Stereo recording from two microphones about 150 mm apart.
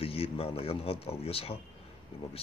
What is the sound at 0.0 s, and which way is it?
Speech, 40° left (ahead or behind).